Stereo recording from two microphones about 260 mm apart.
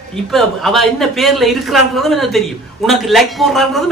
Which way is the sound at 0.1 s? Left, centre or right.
Centre.